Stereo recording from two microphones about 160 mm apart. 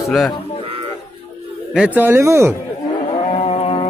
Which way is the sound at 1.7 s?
10° right (ahead or behind).